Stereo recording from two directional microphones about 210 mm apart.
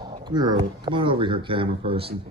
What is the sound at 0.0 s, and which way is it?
Speech, 20° right (ahead or behind).